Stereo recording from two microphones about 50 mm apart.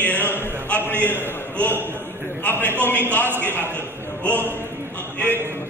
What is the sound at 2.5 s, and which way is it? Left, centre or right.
A man's voice, left.